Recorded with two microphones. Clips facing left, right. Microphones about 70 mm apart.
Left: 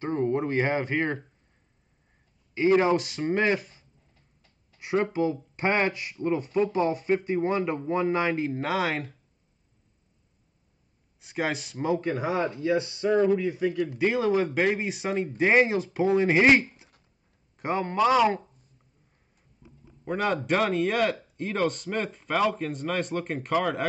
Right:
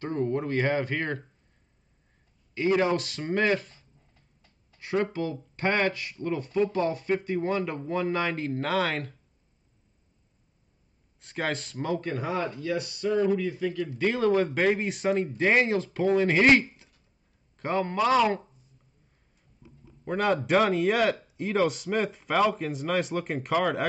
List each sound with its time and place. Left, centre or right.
0.0 s speech: left
2.5 s speech: left
11.1 s a man's voice: centre
20.1 s speech: centre